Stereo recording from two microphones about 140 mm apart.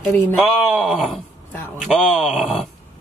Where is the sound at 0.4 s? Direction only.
Centre (ahead or behind).